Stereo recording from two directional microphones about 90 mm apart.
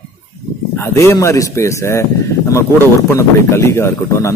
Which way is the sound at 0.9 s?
35° left (ahead or behind).